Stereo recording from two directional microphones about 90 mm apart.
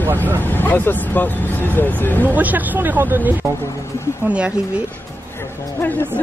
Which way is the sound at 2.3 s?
20° right (ahead or behind).